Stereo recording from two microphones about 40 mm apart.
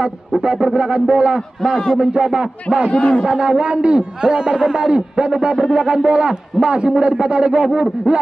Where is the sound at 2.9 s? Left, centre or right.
Left.